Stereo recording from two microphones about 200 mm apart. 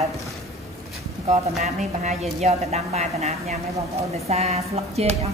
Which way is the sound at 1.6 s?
35° right (ahead or behind).